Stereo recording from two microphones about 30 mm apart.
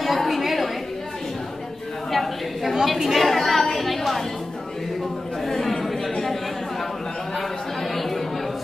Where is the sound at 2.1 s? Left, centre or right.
Centre.